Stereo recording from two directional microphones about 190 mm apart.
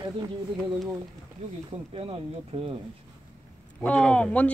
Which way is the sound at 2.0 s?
30° right (ahead or behind).